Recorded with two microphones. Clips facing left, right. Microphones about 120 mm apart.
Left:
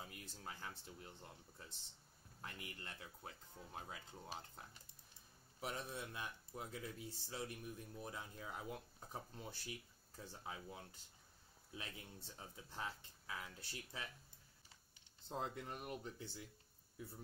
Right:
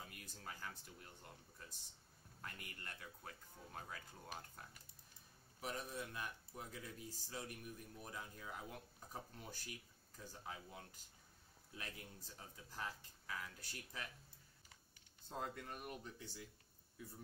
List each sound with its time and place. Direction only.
0.0 s speech: 25° left (ahead or behind)
2.4 s speech: 25° left (ahead or behind)
15.2 s speech: 25° left (ahead or behind)